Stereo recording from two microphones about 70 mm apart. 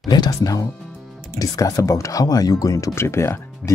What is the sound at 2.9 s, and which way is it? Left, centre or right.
Speech, left.